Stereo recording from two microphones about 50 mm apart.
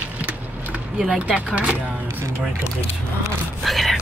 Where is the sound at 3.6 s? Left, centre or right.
Centre.